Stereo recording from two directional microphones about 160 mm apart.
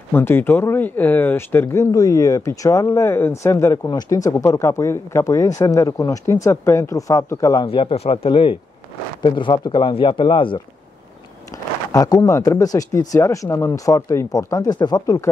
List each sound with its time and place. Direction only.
0.1 s speech: 15° left (ahead or behind)
7.6 s speech: 35° left (ahead or behind)